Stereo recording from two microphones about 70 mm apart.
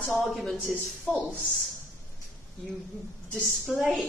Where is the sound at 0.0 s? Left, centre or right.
Centre.